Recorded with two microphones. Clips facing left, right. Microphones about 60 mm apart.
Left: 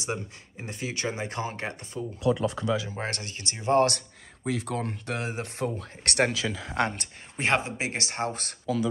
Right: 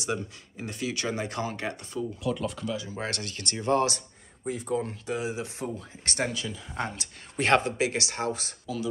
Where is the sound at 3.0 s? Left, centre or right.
Left.